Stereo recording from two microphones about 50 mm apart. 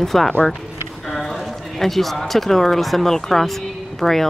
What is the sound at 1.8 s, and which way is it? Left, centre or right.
Speech, centre.